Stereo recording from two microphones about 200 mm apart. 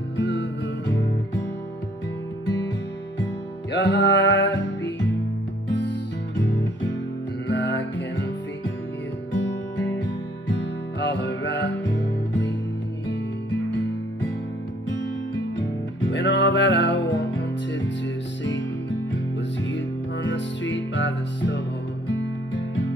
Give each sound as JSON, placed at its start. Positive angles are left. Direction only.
{"t": 0.2, "sound": "music", "side_deg": 65}
{"t": 3.7, "sound": "music", "side_deg": 65}
{"t": 6.3, "sound": "music", "side_deg": 65}